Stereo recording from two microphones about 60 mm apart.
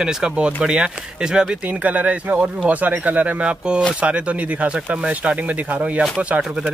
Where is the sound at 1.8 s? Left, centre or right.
Right.